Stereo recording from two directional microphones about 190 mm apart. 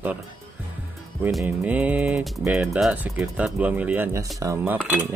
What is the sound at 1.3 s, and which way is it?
Speech, 10° right (ahead or behind).